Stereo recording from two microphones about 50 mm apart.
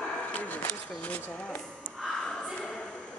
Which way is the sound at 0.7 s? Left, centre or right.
Left.